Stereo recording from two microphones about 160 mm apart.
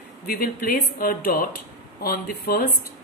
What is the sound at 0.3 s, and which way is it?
A woman's voice, 70° left (ahead or behind).